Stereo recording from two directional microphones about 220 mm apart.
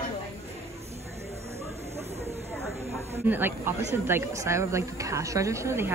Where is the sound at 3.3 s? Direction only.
10° right (ahead or behind).